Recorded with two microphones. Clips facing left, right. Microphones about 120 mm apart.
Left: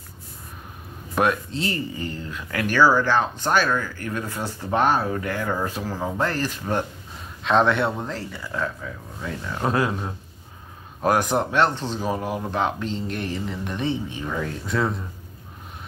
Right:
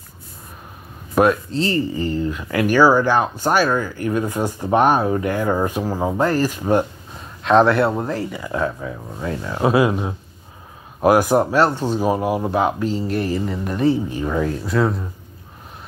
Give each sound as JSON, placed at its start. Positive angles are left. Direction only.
{"t": 1.1, "sound": "speech", "side_deg": 0}
{"t": 7.4, "sound": "speech", "side_deg": 0}
{"t": 8.5, "sound": "speech", "side_deg": -25}
{"t": 9.6, "sound": "speech", "side_deg": -10}